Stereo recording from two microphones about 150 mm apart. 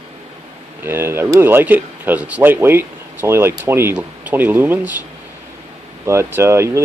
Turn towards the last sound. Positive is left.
turn(degrees=-20)  # may be behind; listen again after turning